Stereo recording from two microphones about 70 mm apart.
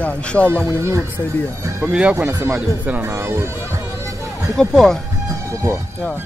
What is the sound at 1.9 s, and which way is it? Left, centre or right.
Speech, centre.